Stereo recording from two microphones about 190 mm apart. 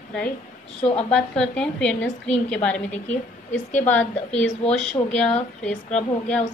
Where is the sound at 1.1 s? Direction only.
5° left (ahead or behind).